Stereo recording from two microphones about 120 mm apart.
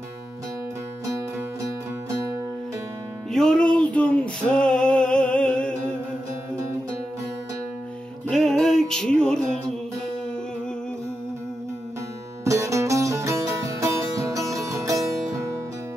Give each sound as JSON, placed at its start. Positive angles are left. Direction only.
{"t": 3.3, "sound": "music", "side_deg": 5}
{"t": 8.3, "sound": "music", "side_deg": 5}
{"t": 12.4, "sound": "music", "side_deg": -25}